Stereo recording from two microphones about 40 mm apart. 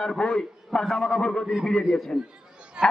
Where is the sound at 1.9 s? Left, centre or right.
Centre.